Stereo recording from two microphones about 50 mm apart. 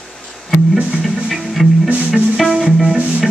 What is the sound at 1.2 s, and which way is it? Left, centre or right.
Music, centre.